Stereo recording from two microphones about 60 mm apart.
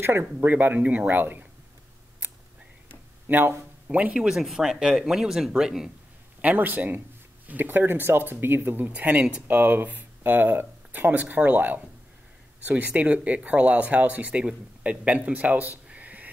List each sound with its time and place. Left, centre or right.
0.0 s speech: right
3.3 s speech: right
4.1 s speech: centre
6.4 s speech: right
9.1 s speech: centre
9.5 s speech: right